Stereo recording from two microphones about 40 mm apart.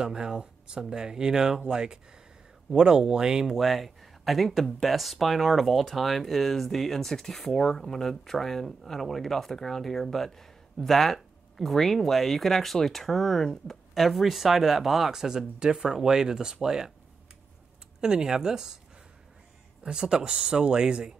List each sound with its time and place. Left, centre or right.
0.0 s speech: centre
3.5 s speech: centre
18.0 s speech: centre
19.8 s speech: centre